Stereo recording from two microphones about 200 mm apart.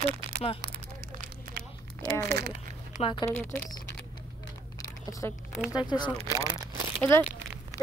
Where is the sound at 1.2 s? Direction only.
45° right (ahead or behind).